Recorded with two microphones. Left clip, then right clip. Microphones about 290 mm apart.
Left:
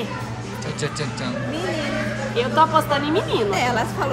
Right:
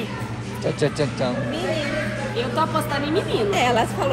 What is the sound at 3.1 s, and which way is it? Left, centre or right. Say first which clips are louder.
Speech: left 1 dB; centre.